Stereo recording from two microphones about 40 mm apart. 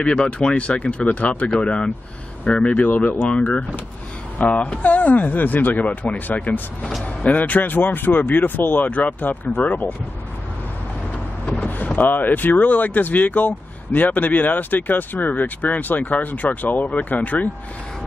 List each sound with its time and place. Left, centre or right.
0.0 s speech: left
0.6 s speech: left
1.0 s speech: left
1.6 s speech: left
2.8 s speech: left
11.6 s speech: left